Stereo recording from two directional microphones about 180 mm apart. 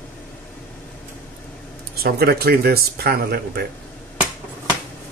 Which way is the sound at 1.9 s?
60° right (ahead or behind).